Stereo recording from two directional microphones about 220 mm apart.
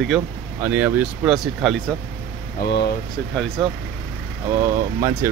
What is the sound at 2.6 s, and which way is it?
Speech, 45° left (ahead or behind).